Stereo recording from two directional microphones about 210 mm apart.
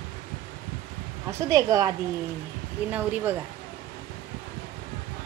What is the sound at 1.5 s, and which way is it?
Speech, 15° right (ahead or behind).